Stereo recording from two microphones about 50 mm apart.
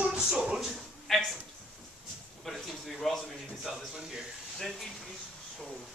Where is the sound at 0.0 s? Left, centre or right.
Right.